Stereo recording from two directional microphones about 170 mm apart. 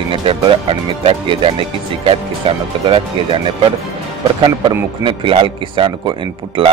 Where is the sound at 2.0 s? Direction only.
30° right (ahead or behind).